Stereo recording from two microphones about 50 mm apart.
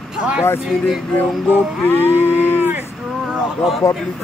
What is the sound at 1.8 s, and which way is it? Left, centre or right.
Cattle, left.